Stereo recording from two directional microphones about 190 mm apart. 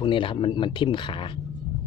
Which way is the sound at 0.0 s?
25° left (ahead or behind).